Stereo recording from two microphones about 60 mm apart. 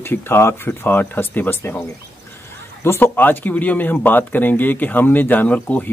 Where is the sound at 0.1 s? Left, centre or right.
Left.